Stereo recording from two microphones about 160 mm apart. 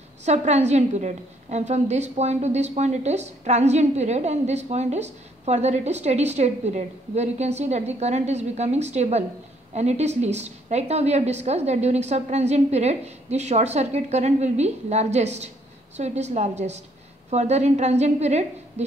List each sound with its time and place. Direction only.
0.2 s a woman's voice: 45° right (ahead or behind)